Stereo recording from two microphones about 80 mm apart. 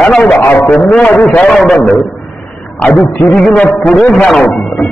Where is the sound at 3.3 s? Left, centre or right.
Centre.